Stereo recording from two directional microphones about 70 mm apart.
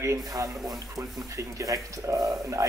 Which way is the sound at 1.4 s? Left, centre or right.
Right.